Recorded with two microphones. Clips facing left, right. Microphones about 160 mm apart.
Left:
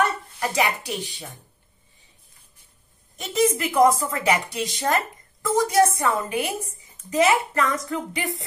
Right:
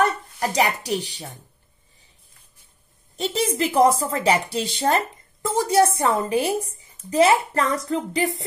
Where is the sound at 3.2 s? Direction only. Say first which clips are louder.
Left 1 dB; 30° right (ahead or behind).